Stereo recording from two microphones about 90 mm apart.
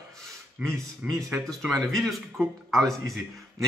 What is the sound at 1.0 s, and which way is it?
Speech, 15° right (ahead or behind).